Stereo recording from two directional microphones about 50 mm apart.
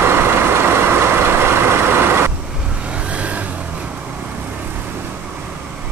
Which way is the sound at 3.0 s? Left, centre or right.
Right.